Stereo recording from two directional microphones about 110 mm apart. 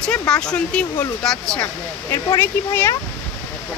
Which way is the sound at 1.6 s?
20° left (ahead or behind).